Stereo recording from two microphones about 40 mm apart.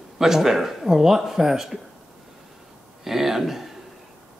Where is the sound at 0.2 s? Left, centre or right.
Centre.